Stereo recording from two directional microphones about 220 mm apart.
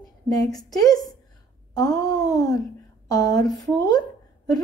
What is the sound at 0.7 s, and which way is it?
A woman's voice, 15° left (ahead or behind).